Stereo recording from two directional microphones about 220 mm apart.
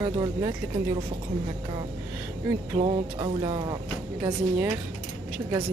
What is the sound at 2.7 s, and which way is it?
Speech, 25° right (ahead or behind).